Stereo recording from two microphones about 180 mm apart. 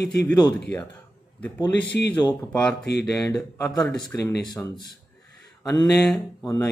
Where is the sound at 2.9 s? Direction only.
70° left (ahead or behind).